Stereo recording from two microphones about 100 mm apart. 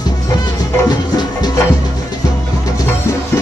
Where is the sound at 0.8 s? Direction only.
45° left (ahead or behind).